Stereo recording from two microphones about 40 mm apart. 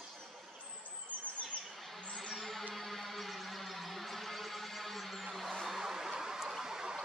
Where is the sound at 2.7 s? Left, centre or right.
Centre.